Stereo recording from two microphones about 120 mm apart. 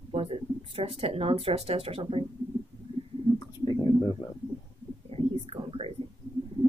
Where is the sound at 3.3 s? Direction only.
40° left (ahead or behind).